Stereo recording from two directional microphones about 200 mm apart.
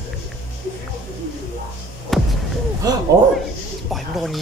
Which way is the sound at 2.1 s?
Centre (ahead or behind).